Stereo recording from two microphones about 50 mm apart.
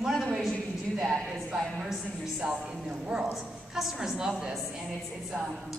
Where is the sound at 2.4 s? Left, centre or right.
Centre.